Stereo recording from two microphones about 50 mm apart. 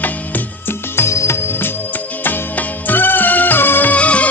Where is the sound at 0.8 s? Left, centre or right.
Left.